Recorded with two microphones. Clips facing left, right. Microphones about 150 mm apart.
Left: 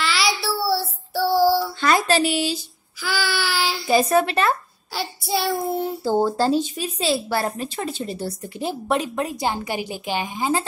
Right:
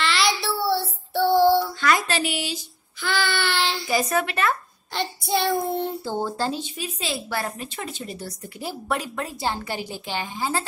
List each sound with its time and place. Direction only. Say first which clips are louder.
0.0 s child singing: even; centre (ahead or behind)
1.8 s a woman's voice: left 4 dB; 30° left (ahead or behind)
3.0 s child singing: even; centre (ahead or behind)
3.8 s speech: left 9 dB; 30° left (ahead or behind)
4.9 s child singing: even; centre (ahead or behind)
6.0 s a woman's voice: left 7 dB; 40° left (ahead or behind); by 10.6 s 15° left (ahead or behind)